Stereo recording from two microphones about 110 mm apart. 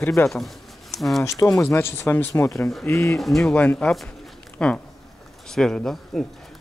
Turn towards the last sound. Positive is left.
turn(degrees=5)  # may be behind; listen again after turning